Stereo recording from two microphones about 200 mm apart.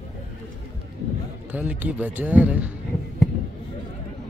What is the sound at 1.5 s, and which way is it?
Speech, 10° right (ahead or behind).